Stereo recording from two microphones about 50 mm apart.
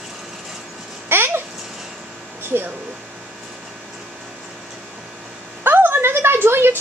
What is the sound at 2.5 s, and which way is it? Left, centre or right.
Speech, right.